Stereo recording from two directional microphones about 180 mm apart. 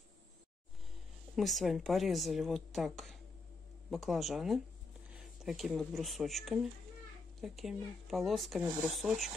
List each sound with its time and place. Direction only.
1.3 s speech: centre (ahead or behind)